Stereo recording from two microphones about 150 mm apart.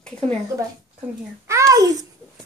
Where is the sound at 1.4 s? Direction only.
20° right (ahead or behind).